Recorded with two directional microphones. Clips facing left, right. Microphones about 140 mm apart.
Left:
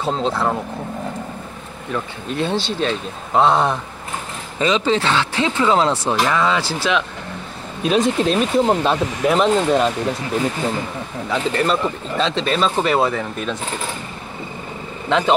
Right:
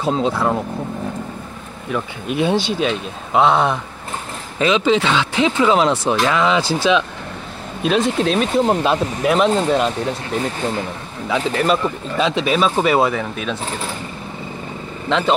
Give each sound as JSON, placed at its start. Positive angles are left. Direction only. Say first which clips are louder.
{"t": 0.0, "sound": "speech", "louder": "right 2 dB", "side_deg": -5}
{"t": 1.9, "sound": "speech", "louder": "right 2 dB", "side_deg": -10}
{"t": 7.8, "sound": "speech", "louder": "even", "side_deg": 0}
{"t": 11.2, "sound": "speech", "louder": "right 2 dB", "side_deg": -5}
{"t": 15.0, "sound": "speech", "louder": "left 1 dB", "side_deg": 5}